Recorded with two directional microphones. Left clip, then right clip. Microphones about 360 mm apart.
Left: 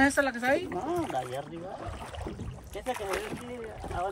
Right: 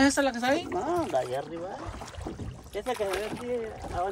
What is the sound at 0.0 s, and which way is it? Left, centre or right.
Speech, centre.